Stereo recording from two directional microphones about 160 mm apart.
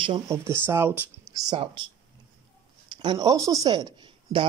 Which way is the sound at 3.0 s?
25° right (ahead or behind).